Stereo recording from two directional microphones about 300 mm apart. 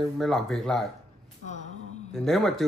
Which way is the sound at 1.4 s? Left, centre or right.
Right.